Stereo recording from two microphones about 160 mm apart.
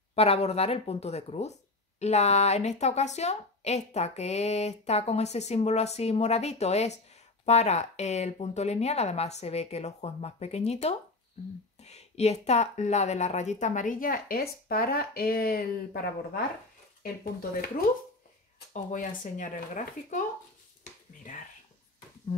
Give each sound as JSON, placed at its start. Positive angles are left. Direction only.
{"t": 0.1, "sound": "speech", "side_deg": 40}
{"t": 18.7, "sound": "speech", "side_deg": 50}